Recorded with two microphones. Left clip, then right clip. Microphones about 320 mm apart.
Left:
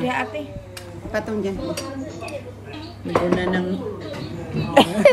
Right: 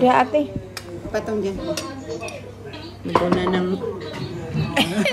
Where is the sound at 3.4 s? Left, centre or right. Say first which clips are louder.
Right 1 dB; centre.